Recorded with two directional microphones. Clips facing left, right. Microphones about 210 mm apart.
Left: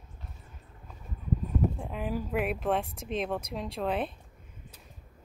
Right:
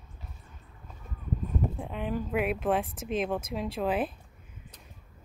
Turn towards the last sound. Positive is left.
turn(degrees=-5)  # may be behind; listen again after turning